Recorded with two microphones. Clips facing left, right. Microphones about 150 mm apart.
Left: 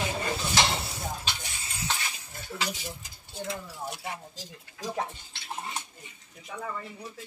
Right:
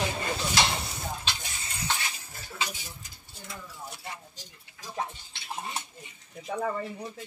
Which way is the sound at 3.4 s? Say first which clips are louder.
Left 5 dB; 90° left.